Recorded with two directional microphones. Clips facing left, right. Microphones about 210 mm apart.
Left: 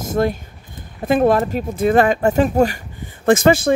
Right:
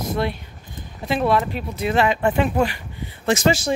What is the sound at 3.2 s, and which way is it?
Speech, 55° left (ahead or behind).